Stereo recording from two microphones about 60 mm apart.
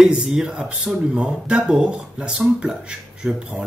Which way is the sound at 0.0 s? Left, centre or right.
Centre.